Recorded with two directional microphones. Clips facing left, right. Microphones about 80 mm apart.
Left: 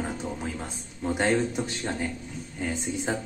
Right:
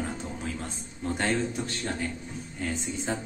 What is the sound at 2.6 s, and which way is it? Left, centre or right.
Speech, centre.